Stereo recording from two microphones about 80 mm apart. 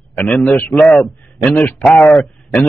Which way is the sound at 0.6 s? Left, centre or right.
Centre.